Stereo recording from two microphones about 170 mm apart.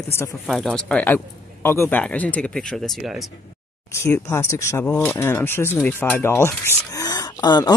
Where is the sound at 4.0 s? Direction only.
15° left (ahead or behind).